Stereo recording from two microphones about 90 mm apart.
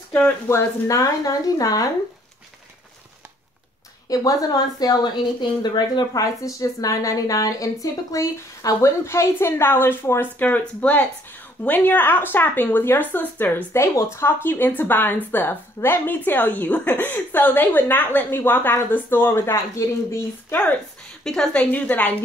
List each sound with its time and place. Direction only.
0.5 s a woman's voice: 35° left (ahead or behind)
4.1 s a woman's voice: 45° left (ahead or behind); by 10.3 s 25° left (ahead or behind)
10.4 s a woman's voice: 15° left (ahead or behind)
13.7 s a woman's voice: 30° left (ahead or behind)
21.2 s speech: 5° left (ahead or behind)